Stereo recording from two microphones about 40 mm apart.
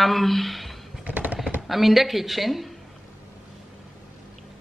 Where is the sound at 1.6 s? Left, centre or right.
Centre.